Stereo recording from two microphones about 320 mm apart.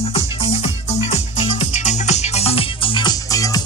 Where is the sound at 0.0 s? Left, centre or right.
Centre.